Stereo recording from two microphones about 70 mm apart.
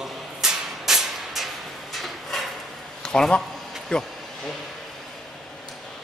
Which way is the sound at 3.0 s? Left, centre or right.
Centre.